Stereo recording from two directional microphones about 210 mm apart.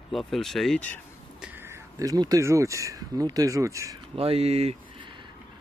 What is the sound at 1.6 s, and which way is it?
Speech, 15° right (ahead or behind).